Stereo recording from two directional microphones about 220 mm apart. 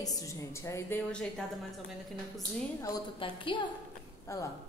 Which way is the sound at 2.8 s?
20° left (ahead or behind).